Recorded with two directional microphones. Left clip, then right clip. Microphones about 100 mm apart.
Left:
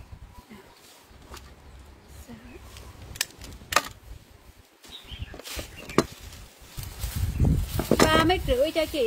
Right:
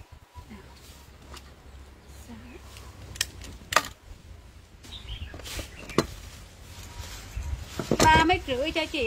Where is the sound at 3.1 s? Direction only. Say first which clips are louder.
Even; 50° left (ahead or behind).